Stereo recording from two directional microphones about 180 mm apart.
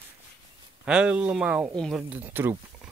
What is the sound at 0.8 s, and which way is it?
Speech, 5° right (ahead or behind).